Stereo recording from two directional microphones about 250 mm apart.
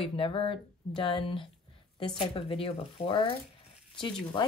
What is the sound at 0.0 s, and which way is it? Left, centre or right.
Speech, left.